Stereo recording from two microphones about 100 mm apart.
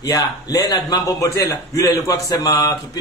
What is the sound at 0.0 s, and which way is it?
A man's voice, 35° left (ahead or behind).